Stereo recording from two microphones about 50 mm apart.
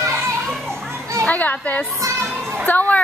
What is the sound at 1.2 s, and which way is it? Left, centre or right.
A child's voice, left.